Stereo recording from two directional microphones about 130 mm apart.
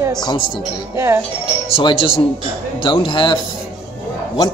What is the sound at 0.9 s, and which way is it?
Speech, 20° right (ahead or behind).